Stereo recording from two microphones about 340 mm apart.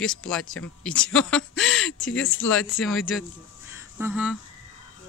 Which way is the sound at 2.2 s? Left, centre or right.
Left.